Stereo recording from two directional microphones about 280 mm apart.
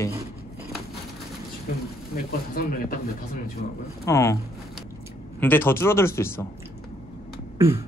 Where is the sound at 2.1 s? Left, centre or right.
Left.